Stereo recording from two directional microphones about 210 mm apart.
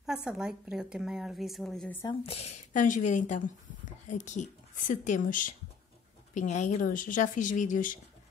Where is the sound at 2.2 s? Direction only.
30° left (ahead or behind).